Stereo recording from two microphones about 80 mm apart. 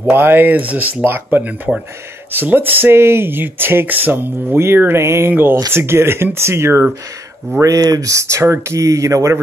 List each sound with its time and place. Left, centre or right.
0.0 s speech: right
7.6 s speech: right